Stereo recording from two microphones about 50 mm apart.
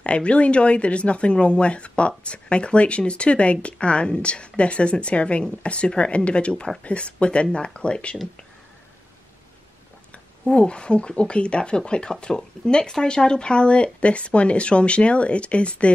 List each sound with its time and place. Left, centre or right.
0.0 s speech: left
10.1 s speech: left